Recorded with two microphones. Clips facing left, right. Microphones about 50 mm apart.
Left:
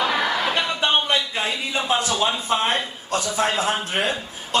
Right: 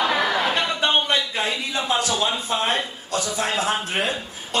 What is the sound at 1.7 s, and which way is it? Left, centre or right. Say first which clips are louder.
A man's voice: left 3 dB; left.